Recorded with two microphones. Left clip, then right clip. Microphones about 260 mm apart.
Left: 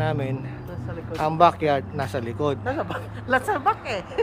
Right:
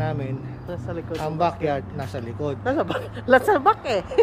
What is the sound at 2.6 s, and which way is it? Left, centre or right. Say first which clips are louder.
Speech: right 4 dB; right.